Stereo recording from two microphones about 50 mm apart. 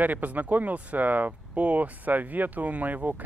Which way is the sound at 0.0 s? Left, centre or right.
Right.